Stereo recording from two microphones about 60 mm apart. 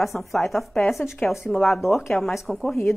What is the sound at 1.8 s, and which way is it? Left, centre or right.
Speech, centre.